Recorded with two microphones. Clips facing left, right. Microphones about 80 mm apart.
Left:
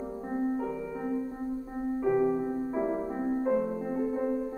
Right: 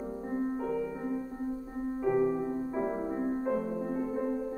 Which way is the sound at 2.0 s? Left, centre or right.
Centre.